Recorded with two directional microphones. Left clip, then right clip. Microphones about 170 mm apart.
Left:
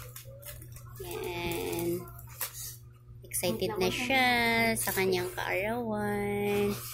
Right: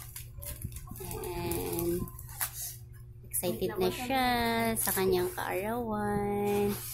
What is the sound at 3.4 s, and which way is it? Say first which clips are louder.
A woman's voice: left 1 dB; 15° right (ahead or behind).